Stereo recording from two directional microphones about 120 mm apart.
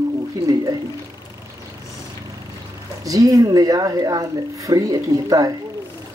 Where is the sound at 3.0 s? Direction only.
30° right (ahead or behind).